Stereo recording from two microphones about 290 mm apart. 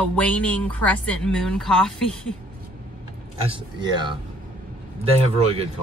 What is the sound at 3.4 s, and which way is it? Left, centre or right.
Speech, centre.